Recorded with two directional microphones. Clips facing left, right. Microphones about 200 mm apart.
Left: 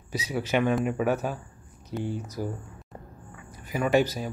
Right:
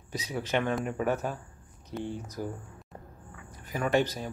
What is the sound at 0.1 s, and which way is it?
Speech, 5° left (ahead or behind).